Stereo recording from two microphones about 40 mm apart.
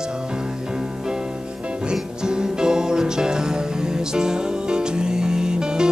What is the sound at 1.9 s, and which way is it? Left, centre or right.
Music, centre.